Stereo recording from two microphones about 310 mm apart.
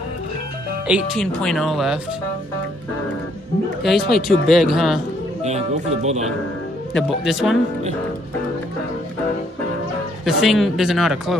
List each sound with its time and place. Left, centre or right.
0.8 s speech: centre
4.1 s speech: centre
5.4 s speech: right
7.0 s speech: centre
10.2 s speech: centre